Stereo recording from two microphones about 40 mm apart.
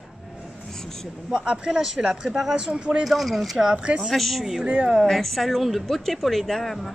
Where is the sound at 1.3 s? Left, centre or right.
Right.